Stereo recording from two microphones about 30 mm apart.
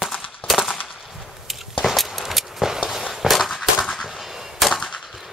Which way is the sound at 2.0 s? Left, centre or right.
Centre.